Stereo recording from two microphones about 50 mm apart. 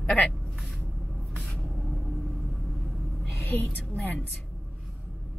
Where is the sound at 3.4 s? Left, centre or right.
Left.